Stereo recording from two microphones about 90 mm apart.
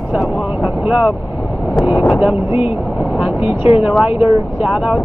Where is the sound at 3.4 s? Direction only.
90° left.